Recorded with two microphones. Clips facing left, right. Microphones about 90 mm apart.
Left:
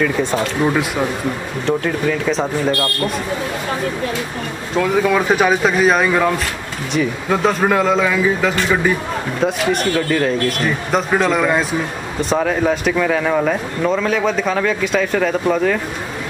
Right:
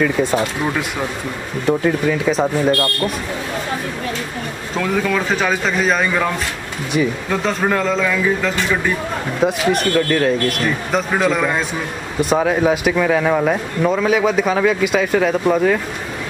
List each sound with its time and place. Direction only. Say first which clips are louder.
0.0 s speech: right 1 dB; 5° right (ahead or behind)
1.7 s speech: right 2 dB; 5° right (ahead or behind)
5.1 s speech: left 4 dB; 10° left (ahead or behind); by 7.1 s 5° right (ahead or behind)
7.2 s speech: left 3 dB; 10° left (ahead or behind)
9.4 s speech: right 1 dB; 5° right (ahead or behind)